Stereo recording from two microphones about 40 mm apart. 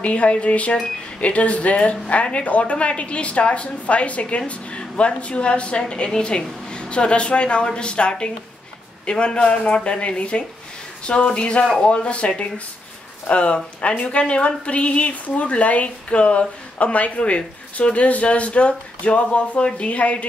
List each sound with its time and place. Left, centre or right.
0.0 s speech: left